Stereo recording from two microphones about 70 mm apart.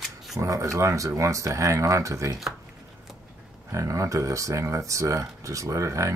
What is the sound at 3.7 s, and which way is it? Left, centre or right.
Speech, right.